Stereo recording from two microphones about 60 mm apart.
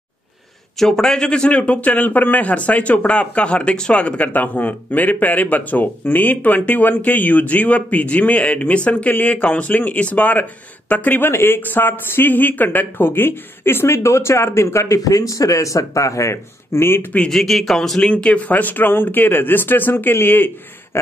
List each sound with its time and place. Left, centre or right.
0.7 s speech: centre; by 15.0 s left
15.0 s speech: left
17.3 s speech: centre
18.0 s speech: left